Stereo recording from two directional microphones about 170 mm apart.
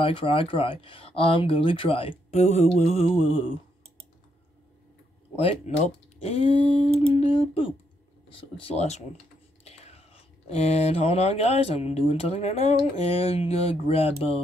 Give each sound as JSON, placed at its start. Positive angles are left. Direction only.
{"t": 0.0, "sound": "speech", "side_deg": 30}
{"t": 5.3, "sound": "speech", "side_deg": 35}
{"t": 9.7, "sound": "whispering", "side_deg": 40}
{"t": 10.5, "sound": "speech", "side_deg": 40}